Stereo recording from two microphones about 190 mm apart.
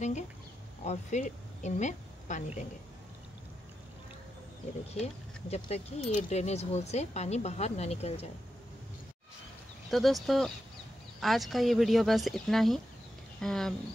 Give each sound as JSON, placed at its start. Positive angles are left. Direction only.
{"t": 0.8, "sound": "a woman's voice", "side_deg": 40}
{"t": 4.9, "sound": "speech", "side_deg": 35}
{"t": 9.8, "sound": "speech", "side_deg": 0}